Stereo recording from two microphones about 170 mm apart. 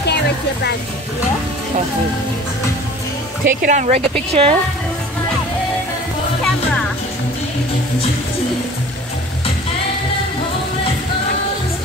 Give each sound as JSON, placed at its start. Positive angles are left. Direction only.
{"t": 3.4, "sound": "a woman's voice", "side_deg": -50}